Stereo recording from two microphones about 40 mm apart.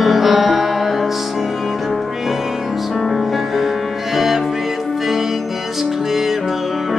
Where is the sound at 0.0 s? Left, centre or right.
Centre.